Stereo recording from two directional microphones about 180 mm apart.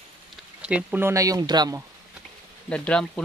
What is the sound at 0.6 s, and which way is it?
Speech, 10° right (ahead or behind).